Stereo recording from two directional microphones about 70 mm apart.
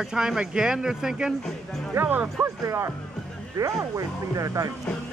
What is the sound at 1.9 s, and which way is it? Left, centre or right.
Speech, right.